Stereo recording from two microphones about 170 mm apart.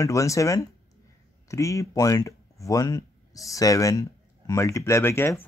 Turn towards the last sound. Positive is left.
turn(degrees=15)  # may be behind; listen again after turning